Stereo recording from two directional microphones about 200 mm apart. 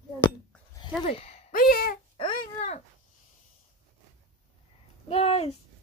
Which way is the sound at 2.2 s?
30° left (ahead or behind).